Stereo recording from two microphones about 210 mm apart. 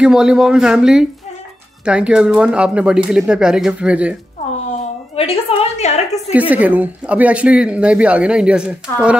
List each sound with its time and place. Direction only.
0.0 s speech: 5° right (ahead or behind)
4.6 s a woman's voice: 30° left (ahead or behind)
6.5 s speech: 10° right (ahead or behind)